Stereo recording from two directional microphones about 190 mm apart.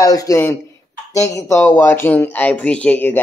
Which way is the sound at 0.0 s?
20° left (ahead or behind).